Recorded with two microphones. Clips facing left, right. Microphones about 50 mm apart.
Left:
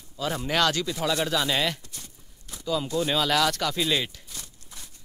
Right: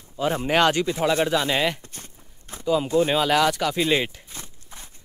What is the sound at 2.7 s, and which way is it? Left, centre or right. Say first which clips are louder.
Speech: right 6 dB; right.